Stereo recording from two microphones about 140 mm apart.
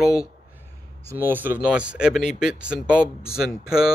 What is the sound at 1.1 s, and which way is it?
Speech, 15° right (ahead or behind).